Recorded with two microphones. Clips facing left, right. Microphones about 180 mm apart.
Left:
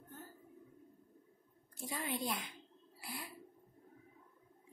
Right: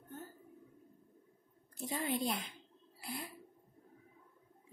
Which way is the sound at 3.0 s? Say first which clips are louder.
Right 4 dB; 25° right (ahead or behind).